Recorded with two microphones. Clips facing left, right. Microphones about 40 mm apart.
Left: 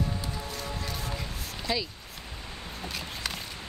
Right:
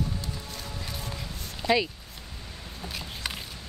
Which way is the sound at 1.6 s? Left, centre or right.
Right.